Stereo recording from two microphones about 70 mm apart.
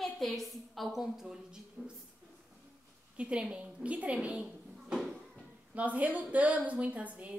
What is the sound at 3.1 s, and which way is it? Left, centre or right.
A woman's voice, centre.